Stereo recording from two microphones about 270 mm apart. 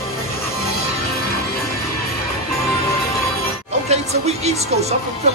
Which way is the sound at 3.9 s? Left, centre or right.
Right.